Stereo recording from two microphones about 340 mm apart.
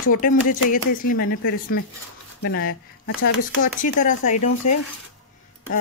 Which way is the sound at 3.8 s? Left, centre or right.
Left.